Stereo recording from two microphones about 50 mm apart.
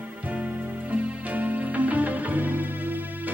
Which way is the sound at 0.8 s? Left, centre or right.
Right.